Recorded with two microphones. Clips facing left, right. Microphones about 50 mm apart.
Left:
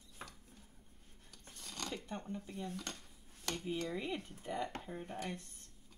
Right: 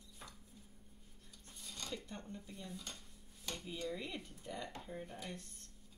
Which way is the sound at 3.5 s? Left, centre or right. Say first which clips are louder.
Left 5 dB; left.